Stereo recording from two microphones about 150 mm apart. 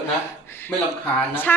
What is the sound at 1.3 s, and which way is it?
Speech, 15° left (ahead or behind).